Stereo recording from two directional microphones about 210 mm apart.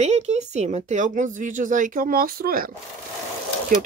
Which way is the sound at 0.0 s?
30° right (ahead or behind).